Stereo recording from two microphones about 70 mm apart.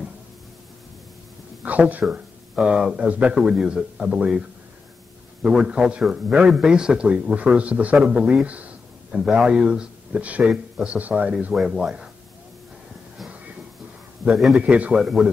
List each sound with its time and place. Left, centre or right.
1.6 s speech: right
2.1 s a man's voice: centre
5.4 s a man's voice: centre
11.5 s a man's voice: centre
14.2 s a man's voice: centre
14.7 s a man's voice: centre
15.0 s a man's voice: centre